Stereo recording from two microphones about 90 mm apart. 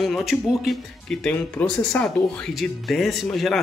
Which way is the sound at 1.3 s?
20° left (ahead or behind).